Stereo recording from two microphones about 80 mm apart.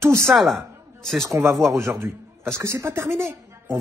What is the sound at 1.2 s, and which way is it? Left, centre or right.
Speech, right.